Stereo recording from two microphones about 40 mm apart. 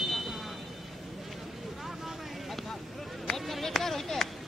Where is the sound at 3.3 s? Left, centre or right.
Centre.